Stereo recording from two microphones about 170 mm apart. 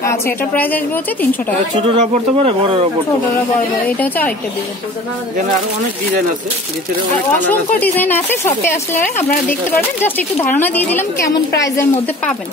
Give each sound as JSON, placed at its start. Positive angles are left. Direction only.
{"t": 0.0, "sound": "speech", "side_deg": 15}
{"t": 2.0, "sound": "speech", "side_deg": -45}
{"t": 3.8, "sound": "speech", "side_deg": 10}
{"t": 7.4, "sound": "speech", "side_deg": 10}
{"t": 8.9, "sound": "speech", "side_deg": 50}
{"t": 9.5, "sound": "a woman's voice", "side_deg": 10}